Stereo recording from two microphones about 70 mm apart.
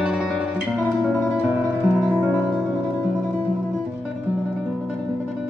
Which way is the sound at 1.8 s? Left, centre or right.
Centre.